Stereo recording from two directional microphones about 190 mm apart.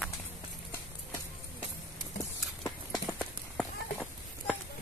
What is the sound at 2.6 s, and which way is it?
Clip-clop, 20° left (ahead or behind).